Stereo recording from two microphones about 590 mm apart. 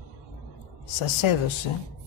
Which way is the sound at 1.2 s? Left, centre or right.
Left.